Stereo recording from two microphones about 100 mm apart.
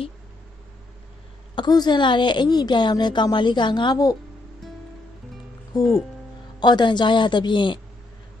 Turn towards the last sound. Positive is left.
turn(degrees=50)  # may be behind; listen again after turning